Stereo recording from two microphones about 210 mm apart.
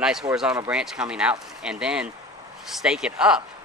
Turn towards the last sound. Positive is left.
turn(degrees=-5)  # may be behind; listen again after turning